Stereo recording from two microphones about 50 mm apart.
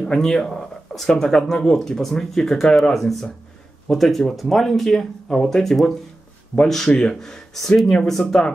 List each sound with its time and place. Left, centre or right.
0.0 s speech: centre
6.9 s speech: centre